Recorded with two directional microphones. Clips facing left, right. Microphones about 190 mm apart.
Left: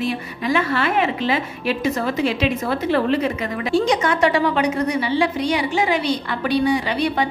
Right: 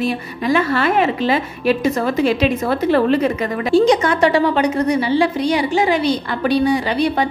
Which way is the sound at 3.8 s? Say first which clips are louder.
Right 4 dB; 35° right (ahead or behind).